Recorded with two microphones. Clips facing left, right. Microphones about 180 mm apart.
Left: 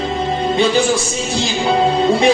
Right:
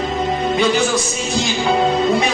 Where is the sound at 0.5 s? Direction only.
30° left (ahead or behind).